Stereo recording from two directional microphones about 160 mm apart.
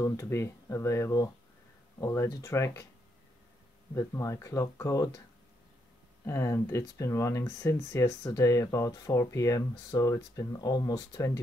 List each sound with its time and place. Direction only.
0.0 s speech: 20° left (ahead or behind)
3.9 s speech: 15° left (ahead or behind)
6.2 s speech: 15° left (ahead or behind)